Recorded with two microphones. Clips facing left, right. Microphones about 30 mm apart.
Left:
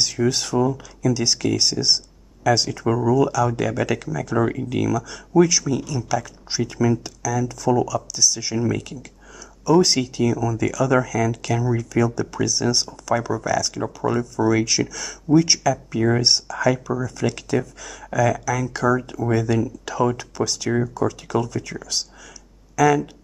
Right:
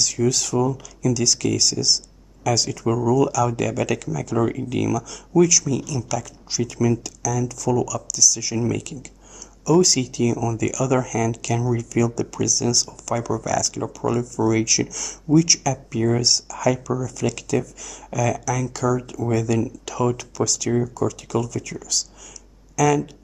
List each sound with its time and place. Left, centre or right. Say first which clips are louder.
0.1 s speech: even; left
4.4 s speech: even; centre
4.9 s speech: left 2 dB; left
14.5 s speech: left 1 dB; centre
16.2 s speech: left 2 dB; left
22.8 s speech: left 2 dB; left